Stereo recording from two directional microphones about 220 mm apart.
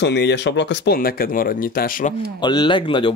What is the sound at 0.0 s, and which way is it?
Speech, 50° left (ahead or behind).